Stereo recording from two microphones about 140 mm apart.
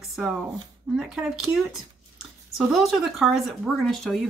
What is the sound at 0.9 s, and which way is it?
Speech, 5° right (ahead or behind).